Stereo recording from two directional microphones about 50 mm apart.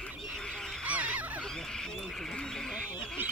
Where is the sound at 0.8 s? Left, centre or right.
Right.